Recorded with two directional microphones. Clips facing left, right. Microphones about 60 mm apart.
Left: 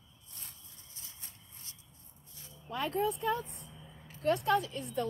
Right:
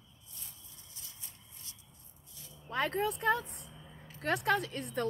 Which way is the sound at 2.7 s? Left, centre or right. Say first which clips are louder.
Even; right.